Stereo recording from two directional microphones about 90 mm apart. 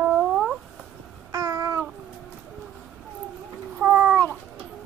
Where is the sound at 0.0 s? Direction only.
10° right (ahead or behind).